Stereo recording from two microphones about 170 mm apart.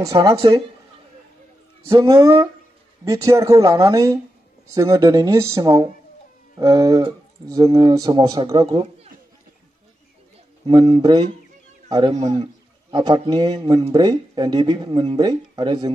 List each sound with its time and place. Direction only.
0.0 s speech: 20° right (ahead or behind)
1.9 s speech: 20° right (ahead or behind)
10.7 s speech: 25° right (ahead or behind)